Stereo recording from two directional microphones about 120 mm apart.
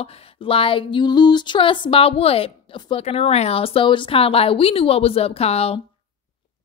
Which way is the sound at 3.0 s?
60° left (ahead or behind).